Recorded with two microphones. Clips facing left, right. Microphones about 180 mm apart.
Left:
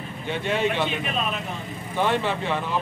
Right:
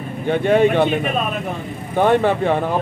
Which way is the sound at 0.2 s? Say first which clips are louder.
Right 10 dB; 55° right (ahead or behind).